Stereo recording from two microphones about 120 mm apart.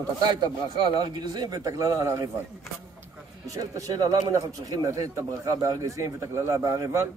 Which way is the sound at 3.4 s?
30° right (ahead or behind).